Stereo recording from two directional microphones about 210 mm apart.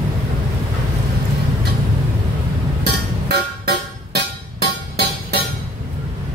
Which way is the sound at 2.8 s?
50° right (ahead or behind).